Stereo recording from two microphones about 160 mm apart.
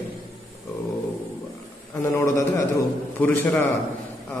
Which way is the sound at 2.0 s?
20° left (ahead or behind).